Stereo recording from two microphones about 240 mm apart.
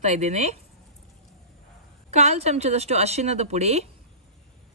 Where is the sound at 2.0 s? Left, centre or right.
Right.